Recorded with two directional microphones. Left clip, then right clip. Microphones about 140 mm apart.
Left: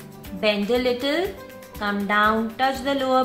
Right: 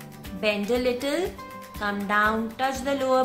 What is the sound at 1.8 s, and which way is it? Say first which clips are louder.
A woman's voice: left 3 dB; 15° right (ahead or behind).